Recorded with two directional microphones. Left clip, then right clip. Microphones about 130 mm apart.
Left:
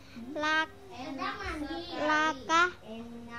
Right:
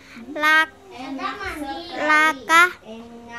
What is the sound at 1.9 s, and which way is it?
Speech, 15° right (ahead or behind).